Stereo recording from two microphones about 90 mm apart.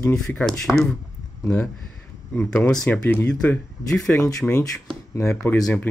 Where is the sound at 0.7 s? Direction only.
5° left (ahead or behind).